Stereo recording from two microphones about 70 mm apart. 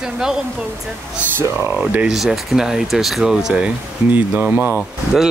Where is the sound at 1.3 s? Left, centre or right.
Right.